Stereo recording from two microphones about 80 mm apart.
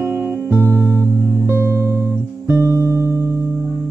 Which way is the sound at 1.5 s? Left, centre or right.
Right.